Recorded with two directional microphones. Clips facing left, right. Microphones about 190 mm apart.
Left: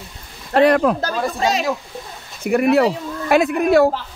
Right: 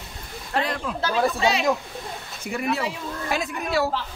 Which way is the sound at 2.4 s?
60° left (ahead or behind).